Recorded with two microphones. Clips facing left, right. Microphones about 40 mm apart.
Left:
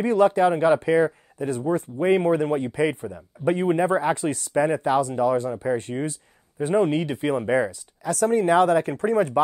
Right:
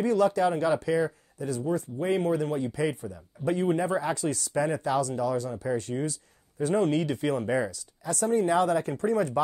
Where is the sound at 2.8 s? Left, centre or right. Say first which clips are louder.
Left 6 dB; left.